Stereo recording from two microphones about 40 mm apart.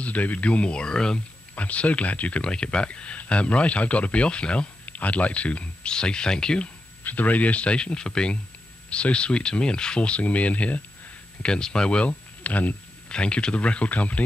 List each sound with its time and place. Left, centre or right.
0.0 s speech: left; by 1.2 s centre
1.5 s speech: left
2.4 s speech: left
4.8 s speech: left
5.9 s speech: left
7.0 s speech: left
10.2 s speech: left
11.4 s speech: left
12.1 s speech: left
13.1 s speech: left